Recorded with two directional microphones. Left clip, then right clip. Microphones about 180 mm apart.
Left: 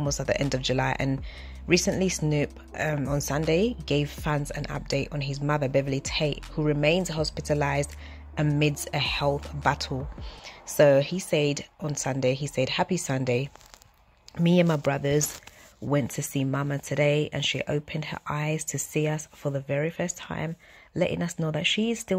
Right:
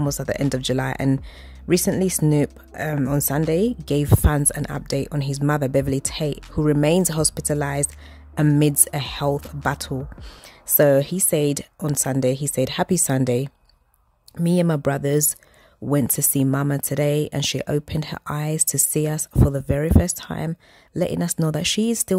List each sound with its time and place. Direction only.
0.0 s speech: 35° right (ahead or behind); by 7.5 s 50° right (ahead or behind)
7.5 s speech: 35° right (ahead or behind)
10.8 s speech: 40° right (ahead or behind)
14.3 s speech: 30° right (ahead or behind)
14.8 s speech: 45° right (ahead or behind)